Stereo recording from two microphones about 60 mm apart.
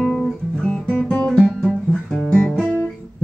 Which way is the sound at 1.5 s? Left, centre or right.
Centre.